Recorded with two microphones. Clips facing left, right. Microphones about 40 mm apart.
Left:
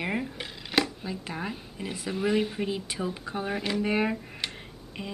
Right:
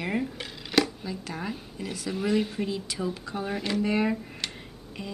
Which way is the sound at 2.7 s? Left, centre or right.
Left.